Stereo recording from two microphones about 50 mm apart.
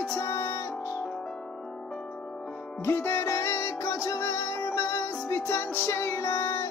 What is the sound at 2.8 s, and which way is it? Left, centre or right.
Music, left.